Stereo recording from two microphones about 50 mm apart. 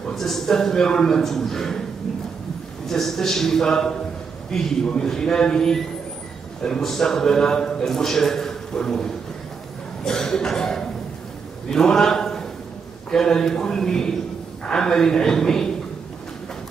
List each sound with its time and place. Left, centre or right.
0.1 s a man's voice: centre
2.9 s a man's voice: centre